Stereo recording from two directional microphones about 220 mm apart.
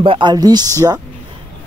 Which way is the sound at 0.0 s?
20° right (ahead or behind).